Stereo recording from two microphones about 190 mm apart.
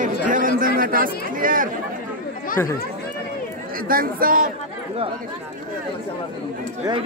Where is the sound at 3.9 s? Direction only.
50° right (ahead or behind).